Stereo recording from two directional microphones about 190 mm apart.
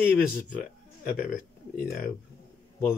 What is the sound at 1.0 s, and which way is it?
Speech, 50° left (ahead or behind).